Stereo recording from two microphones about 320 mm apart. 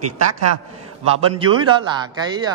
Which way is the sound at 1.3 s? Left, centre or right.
Centre.